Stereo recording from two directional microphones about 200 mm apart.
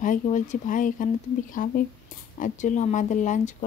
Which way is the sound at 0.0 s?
40° left (ahead or behind).